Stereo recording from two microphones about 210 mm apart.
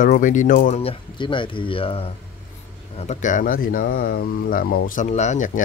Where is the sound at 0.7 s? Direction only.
25° left (ahead or behind).